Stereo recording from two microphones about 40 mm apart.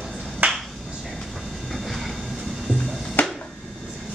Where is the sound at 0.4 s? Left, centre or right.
Right.